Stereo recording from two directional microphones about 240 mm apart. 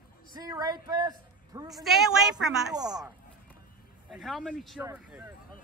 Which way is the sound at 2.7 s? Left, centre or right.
Centre.